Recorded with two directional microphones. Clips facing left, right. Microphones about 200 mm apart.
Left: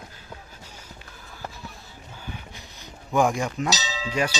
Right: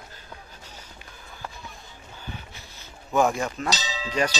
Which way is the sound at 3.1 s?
15° left (ahead or behind).